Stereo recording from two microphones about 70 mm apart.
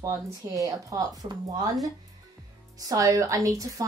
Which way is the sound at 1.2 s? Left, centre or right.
Right.